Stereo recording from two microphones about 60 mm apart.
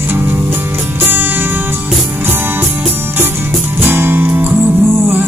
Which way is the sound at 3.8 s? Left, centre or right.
Right.